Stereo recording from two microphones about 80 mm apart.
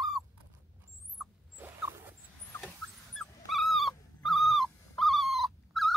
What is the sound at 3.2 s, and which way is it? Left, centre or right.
Dog, centre.